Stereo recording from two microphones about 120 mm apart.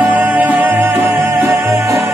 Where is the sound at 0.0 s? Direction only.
15° right (ahead or behind).